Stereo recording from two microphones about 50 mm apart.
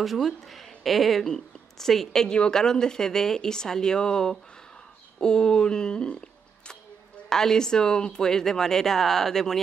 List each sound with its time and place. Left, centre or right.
0.0 s speech: centre